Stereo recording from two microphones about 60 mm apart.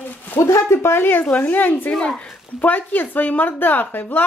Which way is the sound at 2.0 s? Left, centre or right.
Centre.